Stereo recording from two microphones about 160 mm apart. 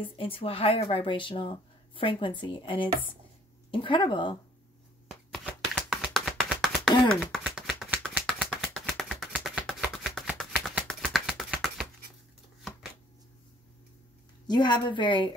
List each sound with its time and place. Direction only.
0.0 s speech: 35° left (ahead or behind)
5.3 s a sound: 5° right (ahead or behind)
7.3 s shuffling cards: 5° right (ahead or behind)
8.4 s a sound: centre (ahead or behind)
10.3 s shuffling cards: centre (ahead or behind)
14.5 s speech: 30° left (ahead or behind)